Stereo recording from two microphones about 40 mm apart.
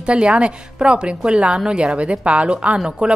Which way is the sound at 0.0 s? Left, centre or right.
Right.